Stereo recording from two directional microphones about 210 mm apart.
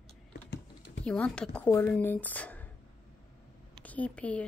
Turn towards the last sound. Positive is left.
turn(degrees=5)  # may be behind; listen again after turning